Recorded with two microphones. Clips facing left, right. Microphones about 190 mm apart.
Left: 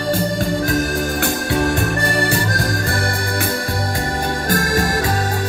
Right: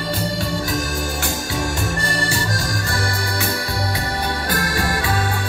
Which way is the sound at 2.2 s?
55° left (ahead or behind).